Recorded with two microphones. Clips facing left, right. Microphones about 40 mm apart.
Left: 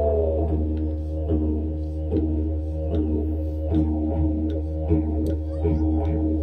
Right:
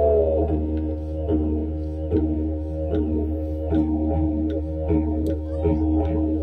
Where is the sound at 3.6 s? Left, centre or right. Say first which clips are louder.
Right 2 dB; centre.